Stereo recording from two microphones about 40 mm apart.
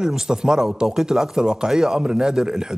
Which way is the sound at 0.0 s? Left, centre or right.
Centre.